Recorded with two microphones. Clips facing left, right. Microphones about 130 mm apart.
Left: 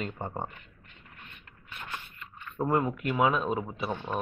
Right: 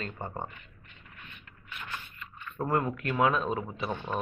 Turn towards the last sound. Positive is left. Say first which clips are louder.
# left 1 dB
turn(degrees=5)  # may be behind; listen again after turning